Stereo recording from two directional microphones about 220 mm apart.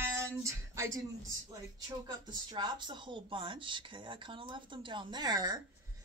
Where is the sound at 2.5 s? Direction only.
20° right (ahead or behind).